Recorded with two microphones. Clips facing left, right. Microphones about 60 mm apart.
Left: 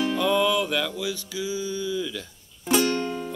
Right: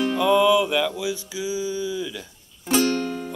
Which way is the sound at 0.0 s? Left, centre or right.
Centre.